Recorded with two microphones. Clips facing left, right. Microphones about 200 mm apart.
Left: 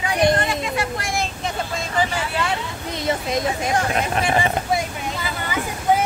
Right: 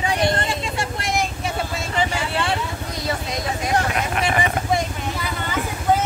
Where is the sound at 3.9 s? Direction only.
30° left (ahead or behind).